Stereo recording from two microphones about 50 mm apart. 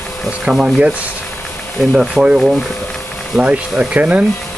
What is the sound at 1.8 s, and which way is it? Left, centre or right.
Speech, centre.